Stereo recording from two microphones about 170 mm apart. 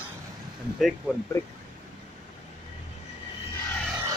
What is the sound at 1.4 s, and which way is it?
Speech, 15° left (ahead or behind).